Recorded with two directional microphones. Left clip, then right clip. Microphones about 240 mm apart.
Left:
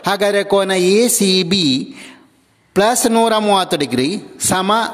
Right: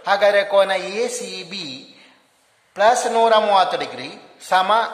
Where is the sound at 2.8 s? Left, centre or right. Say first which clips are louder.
Left 2 dB; left.